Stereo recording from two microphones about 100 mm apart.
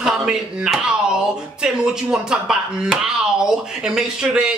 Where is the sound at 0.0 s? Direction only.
5° right (ahead or behind).